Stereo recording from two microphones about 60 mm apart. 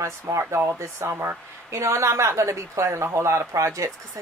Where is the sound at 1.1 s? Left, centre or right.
Right.